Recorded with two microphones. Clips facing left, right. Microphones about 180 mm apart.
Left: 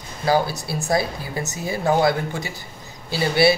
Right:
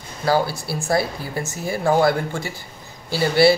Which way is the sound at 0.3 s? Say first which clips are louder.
Even; 20° left (ahead or behind).